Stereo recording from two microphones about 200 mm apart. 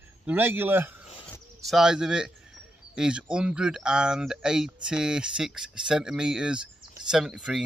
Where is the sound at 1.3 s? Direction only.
Centre (ahead or behind).